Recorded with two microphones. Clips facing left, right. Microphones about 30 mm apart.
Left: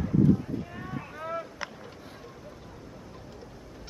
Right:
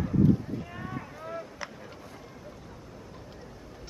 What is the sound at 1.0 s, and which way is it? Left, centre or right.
Boat, centre.